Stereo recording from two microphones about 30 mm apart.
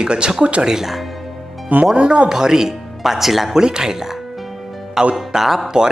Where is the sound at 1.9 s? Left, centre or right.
Right.